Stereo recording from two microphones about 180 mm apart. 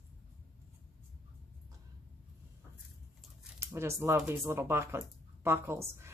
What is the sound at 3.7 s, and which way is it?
Speech, 15° right (ahead or behind).